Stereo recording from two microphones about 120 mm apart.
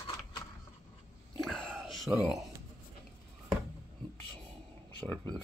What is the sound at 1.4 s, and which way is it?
Whispering, 5° left (ahead or behind).